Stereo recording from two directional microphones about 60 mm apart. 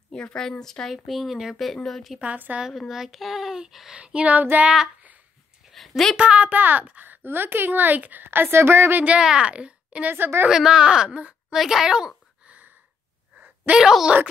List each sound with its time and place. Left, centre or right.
0.1 s a woman's voice: centre
2.1 s speech: right
2.9 s speech: centre; by 4.6 s right
5.7 s a sound: centre
6.1 s speech: centre
6.5 s speech: right
9.2 s speech: centre
10.0 s speech: right
10.5 s speech: centre
11.5 s speech: centre
12.4 s a sound: right
13.7 s speech: centre